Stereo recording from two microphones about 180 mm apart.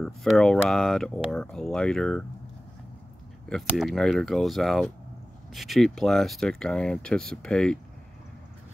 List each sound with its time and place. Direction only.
0.0 s speech: centre (ahead or behind)
3.4 s speech: centre (ahead or behind)